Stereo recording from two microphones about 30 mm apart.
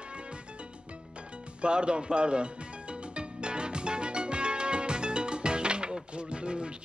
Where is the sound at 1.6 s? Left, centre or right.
Right.